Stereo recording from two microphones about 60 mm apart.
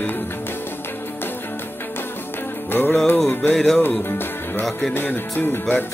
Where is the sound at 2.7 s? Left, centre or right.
Left.